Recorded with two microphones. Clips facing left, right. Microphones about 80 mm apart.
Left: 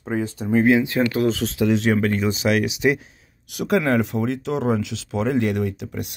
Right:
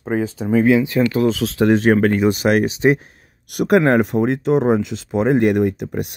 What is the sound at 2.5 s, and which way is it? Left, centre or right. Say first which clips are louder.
Speech: right 4 dB; right.